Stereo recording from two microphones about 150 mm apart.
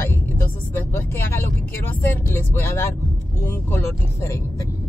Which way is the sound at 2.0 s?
15° left (ahead or behind).